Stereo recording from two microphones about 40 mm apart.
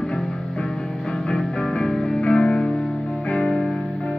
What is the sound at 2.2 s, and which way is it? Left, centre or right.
Music, left.